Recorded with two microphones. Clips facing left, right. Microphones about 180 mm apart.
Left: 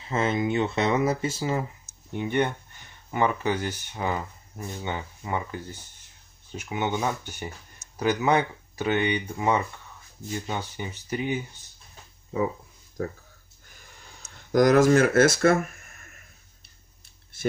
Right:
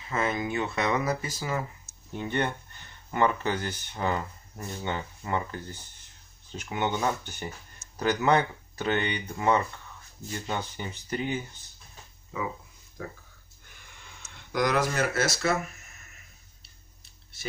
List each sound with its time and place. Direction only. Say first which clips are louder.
0.0 s speech: left 4 dB; 25° left (ahead or behind)
2.1 s speech: left 4 dB; 15° left (ahead or behind)
13.0 s speech: left 8 dB; 40° left (ahead or behind)
13.7 s a sound: left 1 dB; 40° left (ahead or behind)